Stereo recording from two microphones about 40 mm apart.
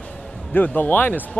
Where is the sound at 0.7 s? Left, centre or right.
Left.